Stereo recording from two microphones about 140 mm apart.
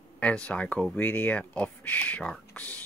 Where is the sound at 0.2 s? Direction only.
10° left (ahead or behind).